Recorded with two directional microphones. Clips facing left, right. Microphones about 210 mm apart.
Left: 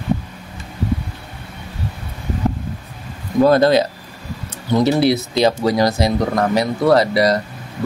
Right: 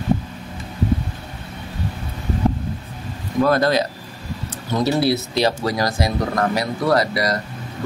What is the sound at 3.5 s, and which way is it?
Speech, 25° left (ahead or behind).